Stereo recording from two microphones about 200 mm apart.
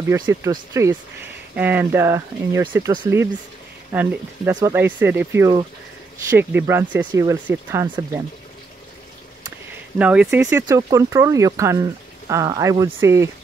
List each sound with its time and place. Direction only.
0.1 s speech: 15° right (ahead or behind)
9.9 s speech: 5° right (ahead or behind)